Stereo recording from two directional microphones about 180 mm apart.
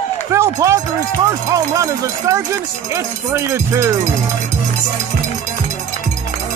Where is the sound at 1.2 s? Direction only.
20° right (ahead or behind).